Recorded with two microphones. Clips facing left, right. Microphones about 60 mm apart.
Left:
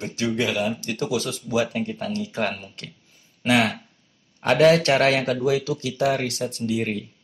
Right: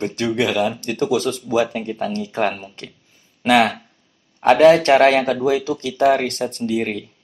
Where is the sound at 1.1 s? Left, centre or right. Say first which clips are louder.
Right 5 dB; right.